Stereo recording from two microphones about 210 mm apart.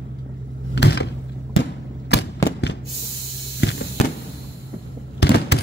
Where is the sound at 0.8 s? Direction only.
50° left (ahead or behind).